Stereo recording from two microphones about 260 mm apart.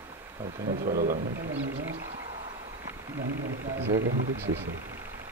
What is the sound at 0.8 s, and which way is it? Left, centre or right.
Speech, right.